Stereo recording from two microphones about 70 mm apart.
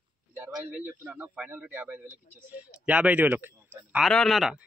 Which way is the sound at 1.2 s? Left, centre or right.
Centre.